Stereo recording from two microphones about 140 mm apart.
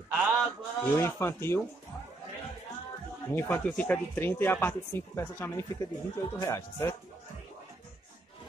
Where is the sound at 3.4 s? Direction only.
10° left (ahead or behind).